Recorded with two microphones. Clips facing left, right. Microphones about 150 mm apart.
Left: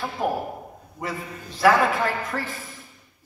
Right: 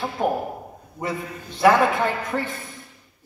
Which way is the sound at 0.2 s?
Centre (ahead or behind).